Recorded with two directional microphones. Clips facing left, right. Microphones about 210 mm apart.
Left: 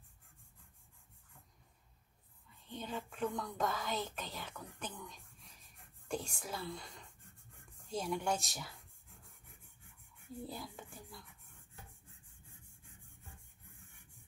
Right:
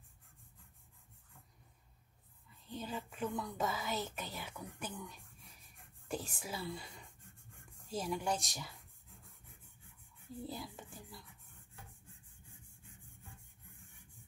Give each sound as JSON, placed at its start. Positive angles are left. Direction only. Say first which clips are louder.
{"t": 2.7, "sound": "speech", "louder": "even", "side_deg": -5}
{"t": 10.3, "sound": "speech", "louder": "right 1 dB", "side_deg": 0}